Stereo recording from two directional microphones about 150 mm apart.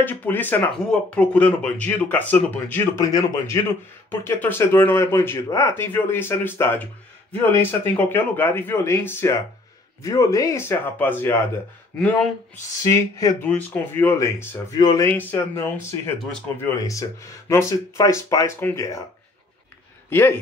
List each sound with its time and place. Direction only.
0.0 s speech: 10° left (ahead or behind)
3.1 s speech: 25° left (ahead or behind); by 12.3 s 5° left (ahead or behind)
12.8 s speech: 20° left (ahead or behind)
16.6 s speech: 20° left (ahead or behind)
20.1 s speech: 15° left (ahead or behind)